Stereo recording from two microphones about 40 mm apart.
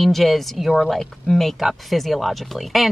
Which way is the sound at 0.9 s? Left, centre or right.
Centre.